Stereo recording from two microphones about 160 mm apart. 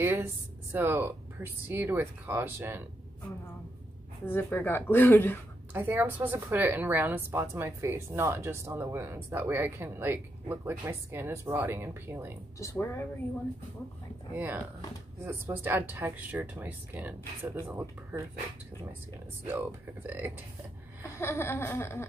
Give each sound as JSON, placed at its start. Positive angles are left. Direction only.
{"t": 0.0, "sound": "a woman's voice", "side_deg": -15}
{"t": 4.3, "sound": "speech", "side_deg": 15}
{"t": 5.7, "sound": "a woman's voice", "side_deg": -10}
{"t": 12.5, "sound": "speech", "side_deg": 20}
{"t": 14.3, "sound": "a woman's voice", "side_deg": -10}
{"t": 19.4, "sound": "a woman's voice", "side_deg": -10}
{"t": 21.2, "sound": "speech", "side_deg": 15}